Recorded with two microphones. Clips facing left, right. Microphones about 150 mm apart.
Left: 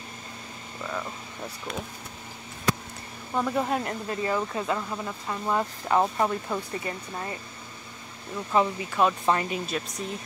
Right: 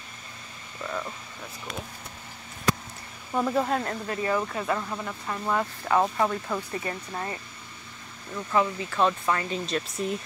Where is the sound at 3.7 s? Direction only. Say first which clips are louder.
Even; 15° left (ahead or behind).